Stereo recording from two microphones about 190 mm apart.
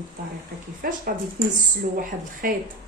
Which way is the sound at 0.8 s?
50° right (ahead or behind).